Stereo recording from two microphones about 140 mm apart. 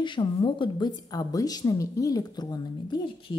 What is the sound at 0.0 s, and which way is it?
Speech, 35° left (ahead or behind).